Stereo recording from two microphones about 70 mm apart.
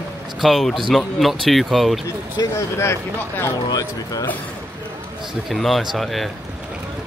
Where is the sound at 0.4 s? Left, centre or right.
Centre.